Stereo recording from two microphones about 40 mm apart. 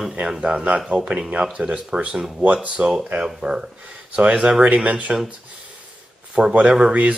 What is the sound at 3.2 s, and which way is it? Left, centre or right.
Speech, right.